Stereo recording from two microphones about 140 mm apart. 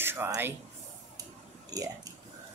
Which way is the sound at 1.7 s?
25° right (ahead or behind).